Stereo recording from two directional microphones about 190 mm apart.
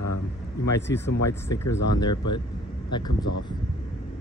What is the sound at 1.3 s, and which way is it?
Speech, 15° left (ahead or behind).